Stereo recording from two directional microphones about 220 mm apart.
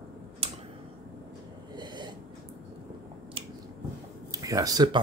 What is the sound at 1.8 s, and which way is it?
Snort, 20° right (ahead or behind).